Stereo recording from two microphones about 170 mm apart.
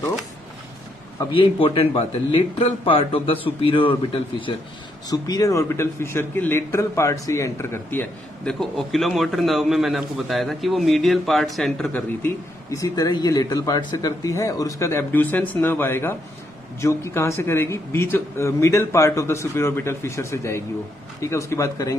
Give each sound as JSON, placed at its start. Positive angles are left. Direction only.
{"t": 1.3, "sound": "a man's voice", "side_deg": 30}
{"t": 12.7, "sound": "a man's voice", "side_deg": 20}